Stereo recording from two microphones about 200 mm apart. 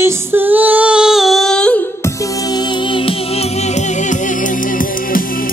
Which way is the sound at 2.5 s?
20° left (ahead or behind).